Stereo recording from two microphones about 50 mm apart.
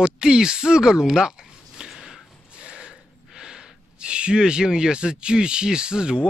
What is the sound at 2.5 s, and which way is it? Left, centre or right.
Speech, centre.